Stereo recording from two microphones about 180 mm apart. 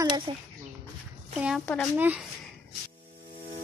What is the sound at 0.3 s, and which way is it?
Speech, 30° right (ahead or behind).